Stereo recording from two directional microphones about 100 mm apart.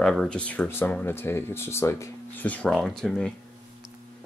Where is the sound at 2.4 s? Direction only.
15° left (ahead or behind).